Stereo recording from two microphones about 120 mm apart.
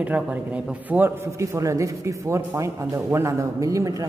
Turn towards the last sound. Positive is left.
turn(degrees=-25)  # may be behind; listen again after turning